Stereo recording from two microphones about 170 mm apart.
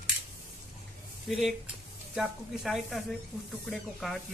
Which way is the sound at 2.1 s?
Centre (ahead or behind).